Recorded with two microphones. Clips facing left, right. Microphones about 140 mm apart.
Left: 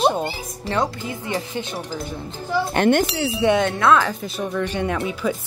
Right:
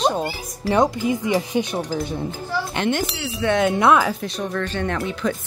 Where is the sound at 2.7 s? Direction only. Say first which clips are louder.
Left 6 dB; 50° left (ahead or behind).